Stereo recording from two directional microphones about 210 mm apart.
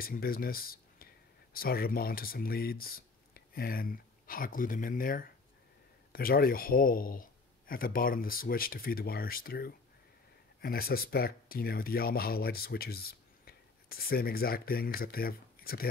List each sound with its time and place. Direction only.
0.0 s speech: 45° left (ahead or behind)